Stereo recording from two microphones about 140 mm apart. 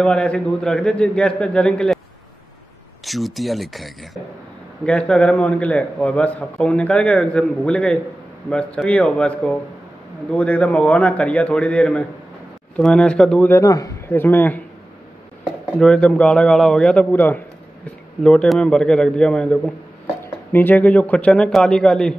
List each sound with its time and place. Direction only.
0.0 s a man's voice: 5° left (ahead or behind)
3.1 s a man's voice: centre (ahead or behind)
13.6 s a man's voice: 25° left (ahead or behind)
15.8 s a man's voice: 5° left (ahead or behind)